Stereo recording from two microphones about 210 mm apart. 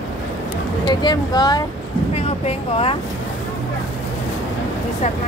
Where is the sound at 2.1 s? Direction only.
30° left (ahead or behind).